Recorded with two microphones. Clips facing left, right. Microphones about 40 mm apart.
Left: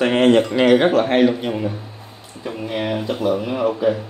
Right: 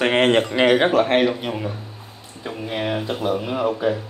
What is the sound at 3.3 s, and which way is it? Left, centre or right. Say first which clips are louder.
Speech: left 2 dB; centre.